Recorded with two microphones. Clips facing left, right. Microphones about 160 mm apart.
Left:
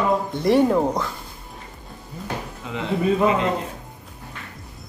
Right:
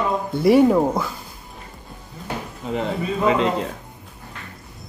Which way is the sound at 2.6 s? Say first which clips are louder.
Right 7 dB; 35° right (ahead or behind).